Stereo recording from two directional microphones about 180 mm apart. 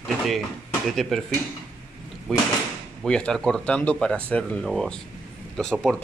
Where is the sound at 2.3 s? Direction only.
Centre (ahead or behind).